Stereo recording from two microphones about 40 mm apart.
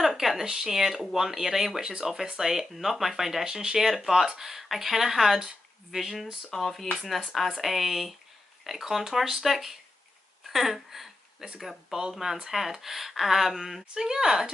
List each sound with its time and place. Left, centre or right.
0.0 s speech: centre
6.5 s speech: centre
10.4 s a sound: centre
11.9 s speech: centre
13.9 s speech: centre